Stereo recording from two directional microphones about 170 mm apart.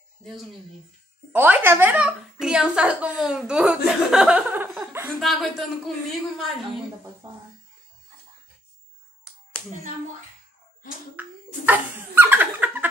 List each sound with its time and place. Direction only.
0.2 s speech: centre (ahead or behind)
1.3 s a woman's voice: 10° right (ahead or behind)
7.2 s music: 25° right (ahead or behind)
11.1 s a sound: 10° right (ahead or behind)